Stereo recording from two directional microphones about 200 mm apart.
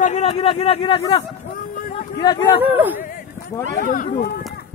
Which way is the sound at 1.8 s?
40° left (ahead or behind).